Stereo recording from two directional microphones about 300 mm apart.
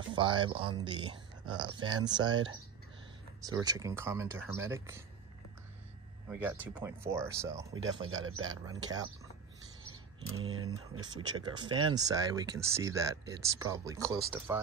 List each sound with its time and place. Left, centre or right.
0.1 s speech: centre
3.6 s speech: centre
6.2 s speech: centre
10.3 s speech: right
11.0 s speech: centre